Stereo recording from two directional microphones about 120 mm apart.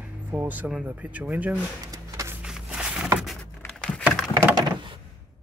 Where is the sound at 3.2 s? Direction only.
Centre (ahead or behind).